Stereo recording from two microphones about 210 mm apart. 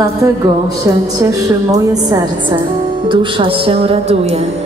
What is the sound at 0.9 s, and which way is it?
A woman's voice, 15° right (ahead or behind).